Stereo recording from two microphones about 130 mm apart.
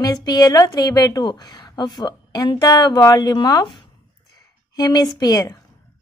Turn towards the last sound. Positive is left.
turn(degrees=30)  # may be behind; listen again after turning